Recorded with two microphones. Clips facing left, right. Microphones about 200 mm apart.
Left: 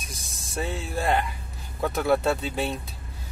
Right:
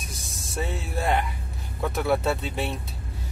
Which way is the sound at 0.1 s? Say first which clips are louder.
Left 1 dB; centre (ahead or behind).